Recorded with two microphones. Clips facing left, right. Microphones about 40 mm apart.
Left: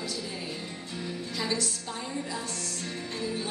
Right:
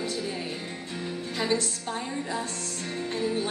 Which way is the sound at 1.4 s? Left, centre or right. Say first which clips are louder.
Right 4 dB; right.